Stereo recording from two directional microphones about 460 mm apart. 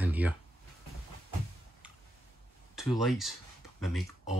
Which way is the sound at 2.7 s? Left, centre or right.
Centre.